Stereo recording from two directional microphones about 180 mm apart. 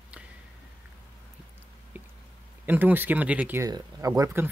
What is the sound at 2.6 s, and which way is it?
Speech, 10° right (ahead or behind).